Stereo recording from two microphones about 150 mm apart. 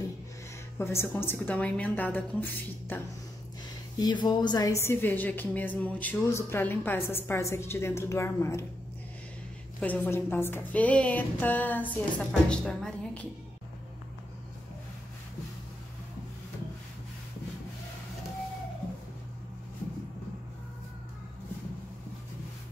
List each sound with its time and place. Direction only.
0.7 s a woman's voice: 15° left (ahead or behind)
4.0 s speech: 30° left (ahead or behind)
4.8 s a woman's voice: 10° left (ahead or behind)
9.8 s a woman's voice: 10° left (ahead or behind)